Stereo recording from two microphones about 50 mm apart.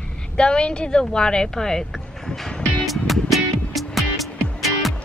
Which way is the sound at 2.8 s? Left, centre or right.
Centre.